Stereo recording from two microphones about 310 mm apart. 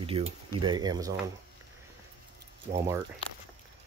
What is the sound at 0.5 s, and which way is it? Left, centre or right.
Speech, centre.